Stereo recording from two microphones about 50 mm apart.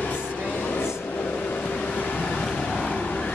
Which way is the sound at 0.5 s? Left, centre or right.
Left.